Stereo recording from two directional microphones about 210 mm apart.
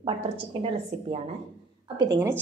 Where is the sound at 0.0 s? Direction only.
25° right (ahead or behind).